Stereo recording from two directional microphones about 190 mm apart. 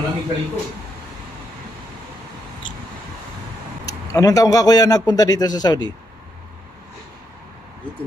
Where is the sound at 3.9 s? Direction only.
20° left (ahead or behind).